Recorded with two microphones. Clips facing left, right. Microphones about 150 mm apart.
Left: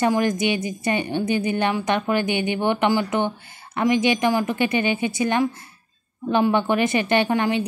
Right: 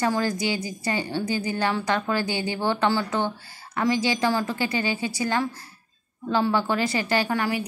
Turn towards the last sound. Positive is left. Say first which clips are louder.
# left 4 dB
turn(degrees=20)  # may be behind; listen again after turning